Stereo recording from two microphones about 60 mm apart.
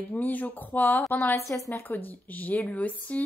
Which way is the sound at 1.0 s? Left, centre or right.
Left.